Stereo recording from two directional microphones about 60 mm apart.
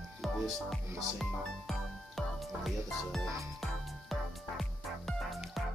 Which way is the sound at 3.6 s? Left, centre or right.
Centre.